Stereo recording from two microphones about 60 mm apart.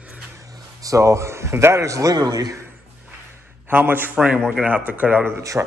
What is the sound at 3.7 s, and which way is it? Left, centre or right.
A man's voice, right.